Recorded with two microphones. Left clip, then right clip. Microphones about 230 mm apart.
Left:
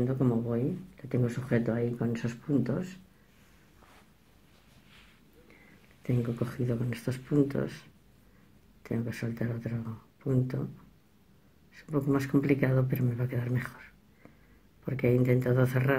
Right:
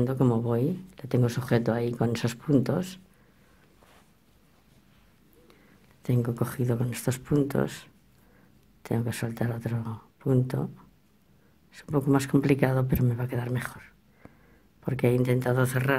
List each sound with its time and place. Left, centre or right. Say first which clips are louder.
0.0 s speech: right 4 dB; right
6.0 s speech: right 3 dB; right
11.8 s speech: right 4 dB; right